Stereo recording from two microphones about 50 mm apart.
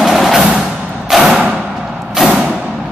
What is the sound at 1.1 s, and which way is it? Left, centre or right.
Thump, centre.